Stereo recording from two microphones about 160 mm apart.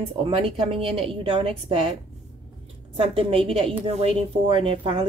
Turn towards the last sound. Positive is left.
turn(degrees=-35)  # may be behind; listen again after turning